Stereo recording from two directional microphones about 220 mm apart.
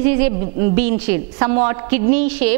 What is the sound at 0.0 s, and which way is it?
A woman's voice, 10° right (ahead or behind).